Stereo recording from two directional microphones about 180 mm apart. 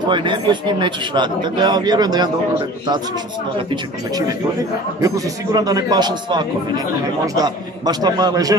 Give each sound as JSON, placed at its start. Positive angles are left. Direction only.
{"t": 0.1, "sound": "speech", "side_deg": -25}
{"t": 5.0, "sound": "speech", "side_deg": -20}